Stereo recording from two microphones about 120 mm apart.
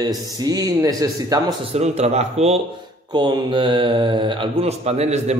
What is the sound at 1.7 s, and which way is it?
Speech, 65° right (ahead or behind).